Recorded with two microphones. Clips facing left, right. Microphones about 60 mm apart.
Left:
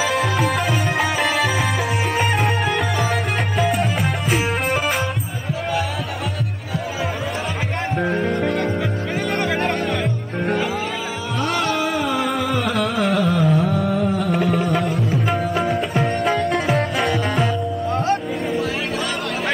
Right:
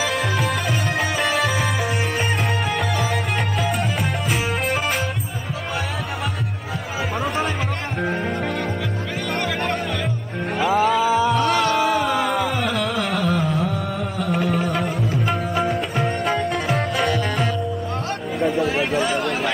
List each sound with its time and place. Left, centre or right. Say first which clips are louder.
0.0 s music: left 3 dB; centre
8.0 s music: left 3 dB; centre
11.0 s music: right 9 dB; right
11.3 s music: right 3 dB; centre
18.4 s chatter: right 3 dB; centre